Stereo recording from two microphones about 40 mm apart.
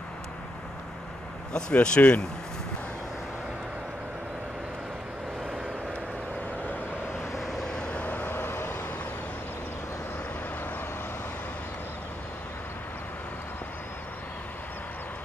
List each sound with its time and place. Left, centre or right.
1.5 s speech: left
7.6 s vehicle: left
8.0 s vehicle: left
8.3 s vehicle: left